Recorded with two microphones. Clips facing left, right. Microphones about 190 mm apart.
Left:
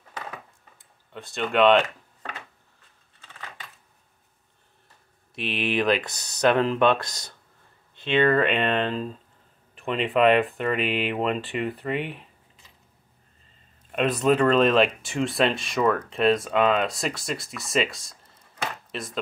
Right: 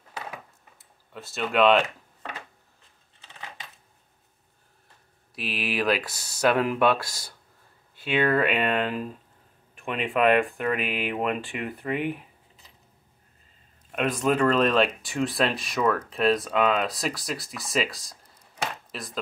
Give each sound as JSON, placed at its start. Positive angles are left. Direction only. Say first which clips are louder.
{"t": 1.1, "sound": "speech", "louder": "left 1 dB", "side_deg": -5}
{"t": 5.3, "sound": "speech", "louder": "left 4 dB", "side_deg": -5}
{"t": 13.9, "sound": "speech", "louder": "left 3 dB", "side_deg": 0}